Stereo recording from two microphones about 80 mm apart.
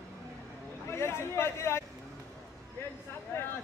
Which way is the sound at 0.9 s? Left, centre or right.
Left.